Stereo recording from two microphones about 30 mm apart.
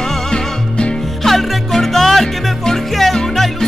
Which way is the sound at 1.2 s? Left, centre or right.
Centre.